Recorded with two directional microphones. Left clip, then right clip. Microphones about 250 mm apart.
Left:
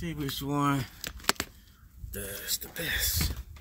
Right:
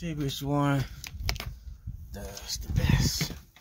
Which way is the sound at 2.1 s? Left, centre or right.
Centre.